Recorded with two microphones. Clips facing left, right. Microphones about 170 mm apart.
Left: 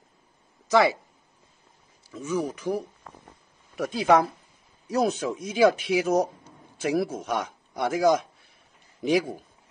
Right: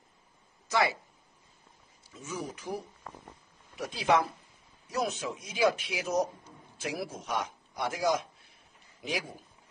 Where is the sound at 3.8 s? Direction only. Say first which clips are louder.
Left 6 dB; 45° left (ahead or behind).